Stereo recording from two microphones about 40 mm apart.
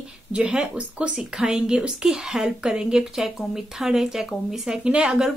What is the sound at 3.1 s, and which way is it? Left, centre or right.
Speech, centre.